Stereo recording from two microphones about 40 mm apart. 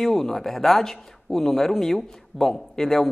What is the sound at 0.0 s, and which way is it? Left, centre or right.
Speech, centre.